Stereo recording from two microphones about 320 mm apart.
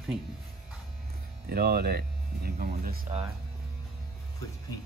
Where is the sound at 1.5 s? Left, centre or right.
Right.